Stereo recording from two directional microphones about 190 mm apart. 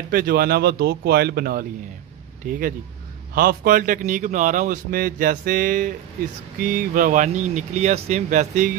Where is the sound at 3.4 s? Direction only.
50° right (ahead or behind).